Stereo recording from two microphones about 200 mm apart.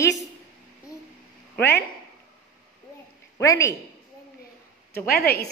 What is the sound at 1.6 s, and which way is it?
Speech, 10° left (ahead or behind).